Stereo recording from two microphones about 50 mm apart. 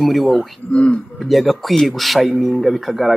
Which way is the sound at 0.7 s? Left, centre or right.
Left.